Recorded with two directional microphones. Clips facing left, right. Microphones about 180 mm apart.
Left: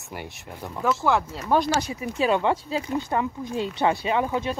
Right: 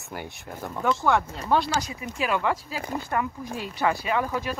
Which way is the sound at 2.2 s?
25° left (ahead or behind).